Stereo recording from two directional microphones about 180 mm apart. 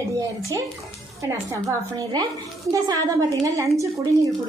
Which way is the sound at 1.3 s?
15° right (ahead or behind).